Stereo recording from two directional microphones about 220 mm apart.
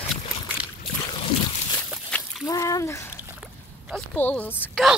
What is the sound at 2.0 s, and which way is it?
Slosh, 5° left (ahead or behind).